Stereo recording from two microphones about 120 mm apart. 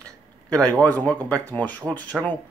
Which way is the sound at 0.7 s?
10° left (ahead or behind).